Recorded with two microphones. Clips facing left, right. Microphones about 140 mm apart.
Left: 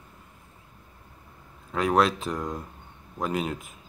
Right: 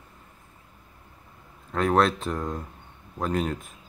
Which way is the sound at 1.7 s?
5° left (ahead or behind).